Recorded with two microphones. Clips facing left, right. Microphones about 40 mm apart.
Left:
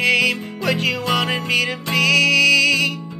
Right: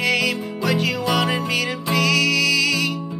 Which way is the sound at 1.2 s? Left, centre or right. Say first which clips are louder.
Left 1 dB; centre.